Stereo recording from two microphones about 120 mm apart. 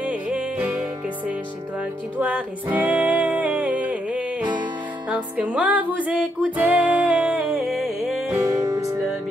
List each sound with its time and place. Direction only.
0.0 s music: 10° right (ahead or behind)
2.1 s music: 10° right (ahead or behind)
8.7 s music: 25° right (ahead or behind)